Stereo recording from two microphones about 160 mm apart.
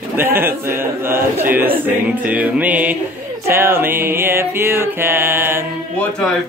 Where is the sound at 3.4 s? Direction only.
15° right (ahead or behind).